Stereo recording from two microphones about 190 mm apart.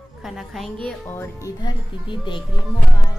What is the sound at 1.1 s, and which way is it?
Speech, 20° left (ahead or behind).